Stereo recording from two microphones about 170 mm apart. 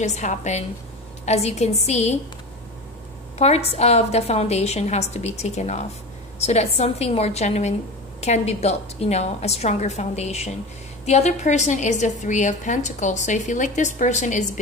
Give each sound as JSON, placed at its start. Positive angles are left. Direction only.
{"t": 0.0, "sound": "a woman's voice", "side_deg": 45}
{"t": 3.3, "sound": "a woman's voice", "side_deg": 40}